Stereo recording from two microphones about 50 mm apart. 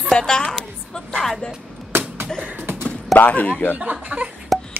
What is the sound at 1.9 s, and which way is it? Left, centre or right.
Slap, right.